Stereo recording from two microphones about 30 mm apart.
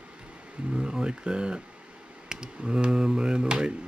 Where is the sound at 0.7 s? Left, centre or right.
Right.